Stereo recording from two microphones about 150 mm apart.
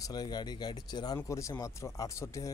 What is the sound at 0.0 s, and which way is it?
A man's voice, 25° left (ahead or behind).